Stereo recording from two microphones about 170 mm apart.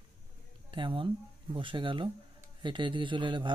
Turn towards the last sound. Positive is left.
turn(degrees=-30)  # may be behind; listen again after turning